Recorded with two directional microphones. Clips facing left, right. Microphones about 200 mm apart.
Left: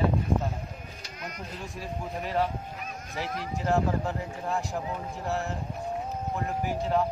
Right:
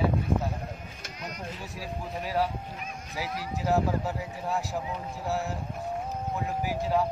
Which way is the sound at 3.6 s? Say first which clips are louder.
Even; 5° right (ahead or behind).